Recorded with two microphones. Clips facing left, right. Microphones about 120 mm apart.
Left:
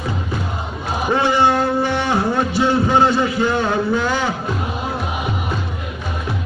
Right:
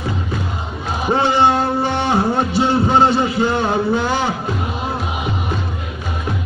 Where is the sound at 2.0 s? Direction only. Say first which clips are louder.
Right 1 dB; 30° right (ahead or behind).